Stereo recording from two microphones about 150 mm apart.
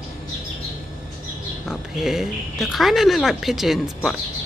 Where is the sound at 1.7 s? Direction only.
Centre (ahead or behind).